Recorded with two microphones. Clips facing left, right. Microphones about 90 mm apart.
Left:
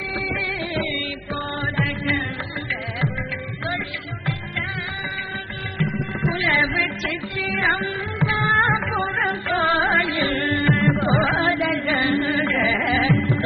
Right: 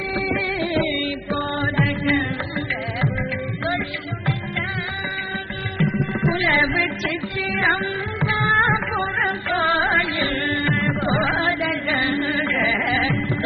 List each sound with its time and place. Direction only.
0.1 s music: 25° right (ahead or behind)
5.8 s music: 20° right (ahead or behind); by 13.4 s 5° left (ahead or behind)